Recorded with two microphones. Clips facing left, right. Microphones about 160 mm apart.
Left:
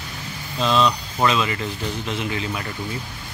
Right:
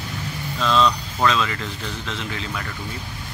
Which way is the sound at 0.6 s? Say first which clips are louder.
Even; 15° left (ahead or behind).